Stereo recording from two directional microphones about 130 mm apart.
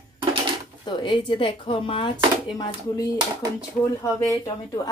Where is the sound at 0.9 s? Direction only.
40° left (ahead or behind).